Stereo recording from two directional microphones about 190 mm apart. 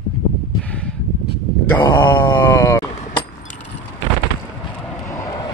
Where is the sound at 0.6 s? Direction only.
5° left (ahead or behind).